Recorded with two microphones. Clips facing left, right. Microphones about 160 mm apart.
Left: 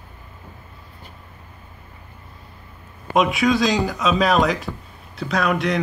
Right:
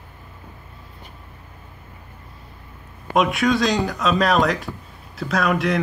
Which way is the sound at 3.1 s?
Centre (ahead or behind).